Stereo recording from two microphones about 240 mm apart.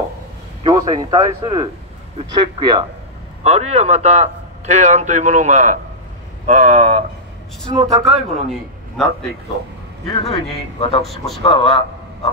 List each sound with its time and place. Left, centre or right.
0.7 s a man's voice: centre
8.0 s a man's voice: centre
10.3 s speech: left
11.1 s a man's voice: centre
11.4 s a man's voice: left